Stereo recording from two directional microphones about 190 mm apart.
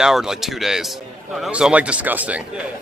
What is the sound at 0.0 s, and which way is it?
A man's voice, 5° right (ahead or behind).